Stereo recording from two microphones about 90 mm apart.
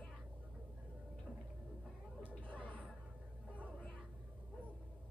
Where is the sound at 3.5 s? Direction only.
15° left (ahead or behind).